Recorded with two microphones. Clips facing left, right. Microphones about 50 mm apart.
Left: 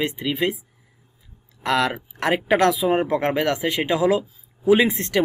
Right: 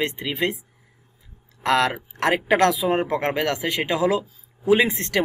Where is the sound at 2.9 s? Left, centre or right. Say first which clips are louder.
Left 2 dB; centre.